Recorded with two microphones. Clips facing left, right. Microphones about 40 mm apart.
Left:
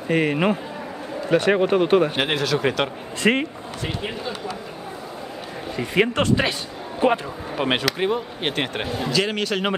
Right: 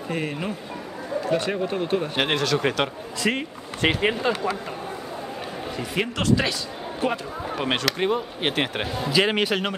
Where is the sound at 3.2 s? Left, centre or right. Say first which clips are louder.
Left 5 dB; left.